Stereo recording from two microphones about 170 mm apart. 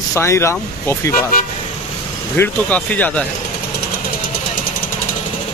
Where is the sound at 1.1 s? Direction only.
55° left (ahead or behind).